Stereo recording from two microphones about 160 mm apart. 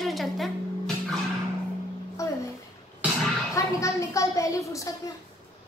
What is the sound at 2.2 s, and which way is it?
Music, 20° left (ahead or behind).